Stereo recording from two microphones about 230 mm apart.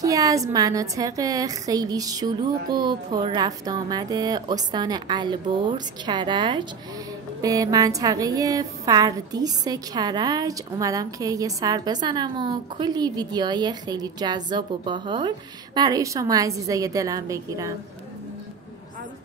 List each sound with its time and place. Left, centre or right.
0.0 s a woman's voice: centre